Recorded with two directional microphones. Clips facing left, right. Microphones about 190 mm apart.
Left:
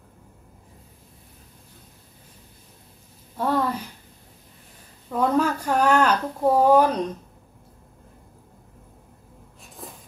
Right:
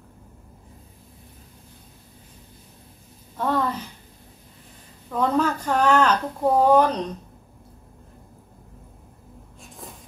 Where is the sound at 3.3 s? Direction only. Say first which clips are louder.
Left 1 dB; 10° left (ahead or behind).